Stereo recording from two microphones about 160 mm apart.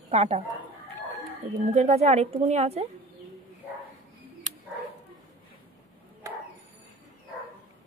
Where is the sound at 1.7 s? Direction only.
45° right (ahead or behind).